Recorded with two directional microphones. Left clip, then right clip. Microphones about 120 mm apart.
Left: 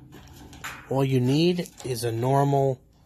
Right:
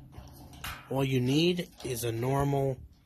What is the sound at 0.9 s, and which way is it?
Speech, 30° left (ahead or behind).